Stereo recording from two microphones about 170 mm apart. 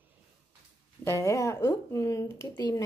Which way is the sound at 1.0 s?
15° left (ahead or behind).